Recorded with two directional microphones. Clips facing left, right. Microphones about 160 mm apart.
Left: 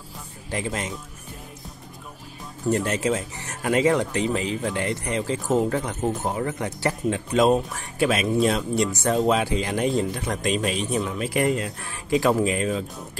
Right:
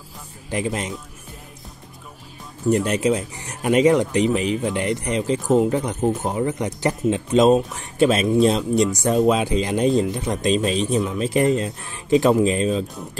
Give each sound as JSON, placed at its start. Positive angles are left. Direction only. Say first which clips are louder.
{"t": 0.5, "sound": "speech", "louder": "right 4 dB", "side_deg": -20}
{"t": 2.7, "sound": "speech", "louder": "right 4 dB", "side_deg": -15}